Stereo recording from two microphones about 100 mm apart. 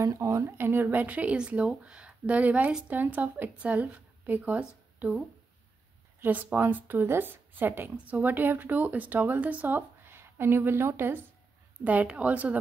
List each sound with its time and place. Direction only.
0.0 s speech: 30° right (ahead or behind); by 5.2 s 15° right (ahead or behind)
6.2 s speech: 20° right (ahead or behind)